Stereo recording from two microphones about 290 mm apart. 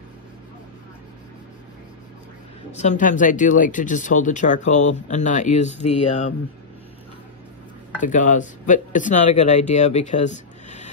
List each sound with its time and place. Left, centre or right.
2.8 s speech: left
8.0 s speech: left